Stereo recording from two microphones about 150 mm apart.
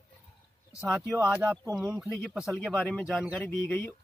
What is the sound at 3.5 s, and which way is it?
Speech, 15° left (ahead or behind).